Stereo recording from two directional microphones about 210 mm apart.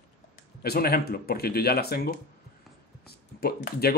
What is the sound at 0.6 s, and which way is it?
Speech, 45° left (ahead or behind).